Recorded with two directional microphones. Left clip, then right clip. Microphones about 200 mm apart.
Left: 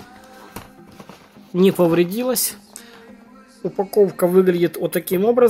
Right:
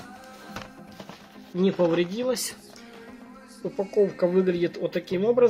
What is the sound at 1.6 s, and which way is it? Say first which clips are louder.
Speech: left 7 dB; 40° left (ahead or behind).